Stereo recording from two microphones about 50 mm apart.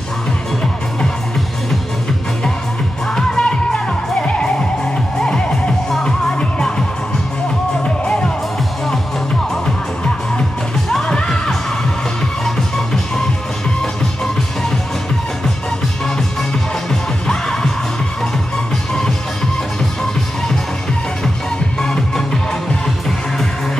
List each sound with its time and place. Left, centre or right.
3.2 s music: centre
8.0 s music: centre
10.9 s music: centre
16.9 s music: centre
21.8 s music: centre